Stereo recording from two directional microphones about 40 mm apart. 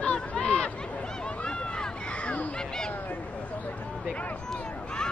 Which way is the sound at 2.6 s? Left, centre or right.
Centre.